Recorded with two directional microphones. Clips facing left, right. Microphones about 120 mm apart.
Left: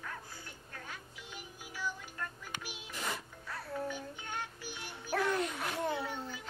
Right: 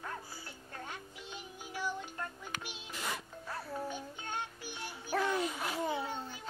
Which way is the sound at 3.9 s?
20° right (ahead or behind).